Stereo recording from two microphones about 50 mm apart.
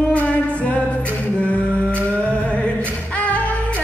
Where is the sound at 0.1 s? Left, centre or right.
Left.